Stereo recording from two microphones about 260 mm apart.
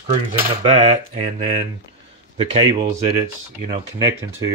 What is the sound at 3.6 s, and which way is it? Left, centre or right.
Speech, centre.